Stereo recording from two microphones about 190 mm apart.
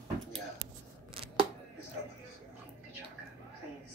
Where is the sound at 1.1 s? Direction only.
30° right (ahead or behind).